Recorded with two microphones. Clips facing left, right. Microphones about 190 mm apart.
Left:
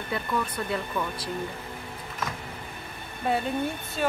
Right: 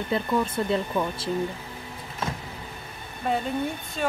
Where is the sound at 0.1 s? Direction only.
25° right (ahead or behind).